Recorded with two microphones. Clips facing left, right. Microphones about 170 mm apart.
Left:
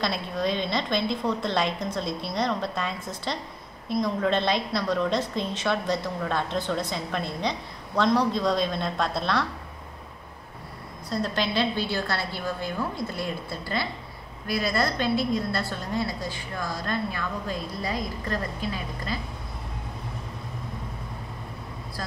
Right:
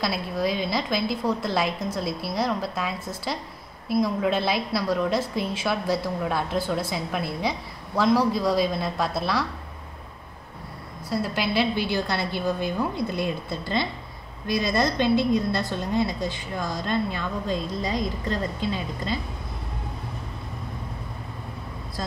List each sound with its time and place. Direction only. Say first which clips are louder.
0.0 s a woman's voice: right 1 dB; 5° right (ahead or behind)
11.1 s a woman's voice: right 1 dB; 10° right (ahead or behind); by 19.1 s 25° right (ahead or behind)